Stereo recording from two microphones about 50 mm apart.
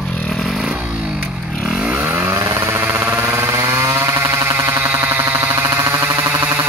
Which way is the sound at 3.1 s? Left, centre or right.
Right.